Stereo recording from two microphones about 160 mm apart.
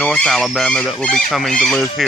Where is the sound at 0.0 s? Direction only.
5° left (ahead or behind).